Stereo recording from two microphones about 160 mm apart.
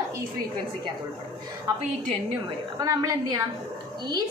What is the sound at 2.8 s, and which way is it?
Speech, 20° right (ahead or behind).